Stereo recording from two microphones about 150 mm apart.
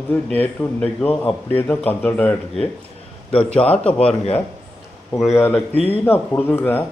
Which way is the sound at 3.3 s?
40° left (ahead or behind).